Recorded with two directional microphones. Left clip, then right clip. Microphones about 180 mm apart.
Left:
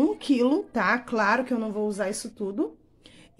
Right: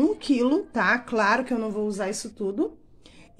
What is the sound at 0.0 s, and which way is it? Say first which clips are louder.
A woman's voice: even; 5° left (ahead or behind).